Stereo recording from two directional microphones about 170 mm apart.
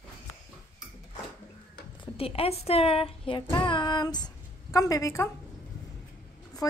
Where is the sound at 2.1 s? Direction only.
35° left (ahead or behind); by 5.3 s 20° left (ahead or behind).